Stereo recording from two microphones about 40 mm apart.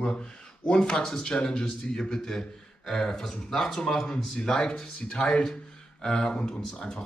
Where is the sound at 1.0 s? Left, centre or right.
Centre.